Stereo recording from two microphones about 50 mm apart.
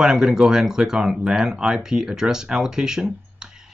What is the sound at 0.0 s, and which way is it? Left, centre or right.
Speech, centre.